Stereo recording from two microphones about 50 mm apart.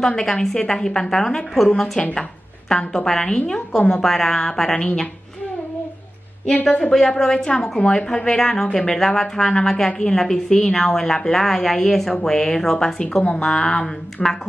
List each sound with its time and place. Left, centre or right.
0.0 s a woman's voice: centre
1.7 s a woman's voice: left
6.4 s a woman's voice: centre